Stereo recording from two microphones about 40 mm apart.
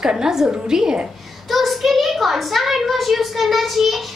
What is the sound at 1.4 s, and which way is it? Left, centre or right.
A child's voice, centre.